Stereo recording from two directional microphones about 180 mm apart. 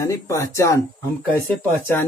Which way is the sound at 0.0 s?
15° left (ahead or behind).